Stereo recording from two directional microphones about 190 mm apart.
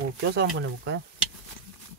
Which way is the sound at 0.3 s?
65° right (ahead or behind).